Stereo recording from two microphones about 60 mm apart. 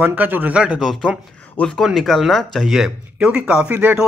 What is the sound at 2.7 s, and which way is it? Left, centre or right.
A man's voice, centre.